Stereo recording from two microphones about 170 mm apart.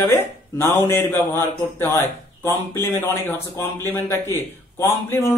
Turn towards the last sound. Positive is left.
turn(degrees=15)  # may be behind; listen again after turning